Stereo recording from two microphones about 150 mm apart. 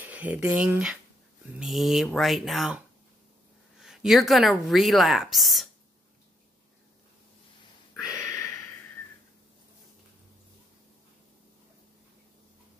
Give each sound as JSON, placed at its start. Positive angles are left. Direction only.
{"t": 0.0, "sound": "speech", "side_deg": -10}
{"t": 3.8, "sound": "speech", "side_deg": -5}
{"t": 7.9, "sound": "a sound", "side_deg": 20}